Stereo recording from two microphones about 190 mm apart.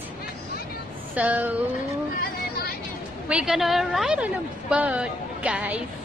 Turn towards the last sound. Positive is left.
turn(degrees=-5)  # may be behind; listen again after turning